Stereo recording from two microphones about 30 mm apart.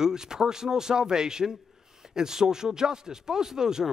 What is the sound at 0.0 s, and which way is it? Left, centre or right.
Speech, right.